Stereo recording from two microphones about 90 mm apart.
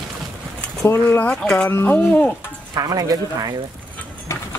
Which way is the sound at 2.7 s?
45° right (ahead or behind).